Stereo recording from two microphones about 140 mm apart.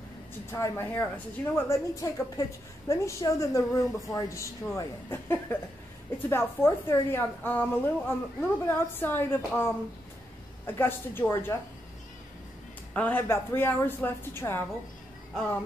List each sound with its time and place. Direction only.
0.5 s a woman's voice: 20° left (ahead or behind)
10.7 s a woman's voice: 15° left (ahead or behind)
12.9 s a woman's voice: 10° left (ahead or behind)